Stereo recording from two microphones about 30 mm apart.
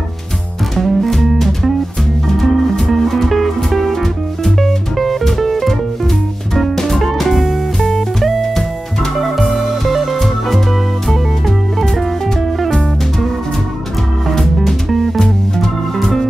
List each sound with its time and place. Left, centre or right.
0.7 s music: centre
2.2 s music: centre
9.8 s music: centre
14.4 s music: centre
16.0 s music: centre